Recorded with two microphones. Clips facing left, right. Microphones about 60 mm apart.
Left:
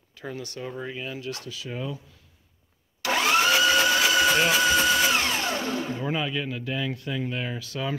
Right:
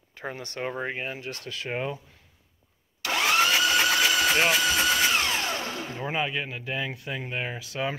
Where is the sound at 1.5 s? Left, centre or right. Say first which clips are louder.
Right 3 dB; right.